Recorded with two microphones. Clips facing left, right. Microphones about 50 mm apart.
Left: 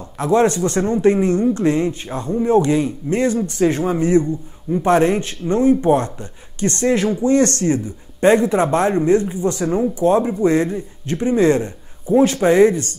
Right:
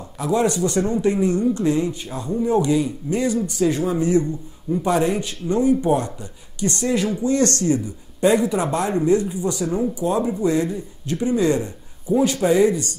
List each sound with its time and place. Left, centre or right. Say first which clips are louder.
0.2 s speech: left 4 dB; left